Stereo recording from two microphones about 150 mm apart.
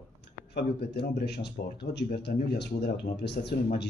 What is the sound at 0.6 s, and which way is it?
A man's voice, 90° left.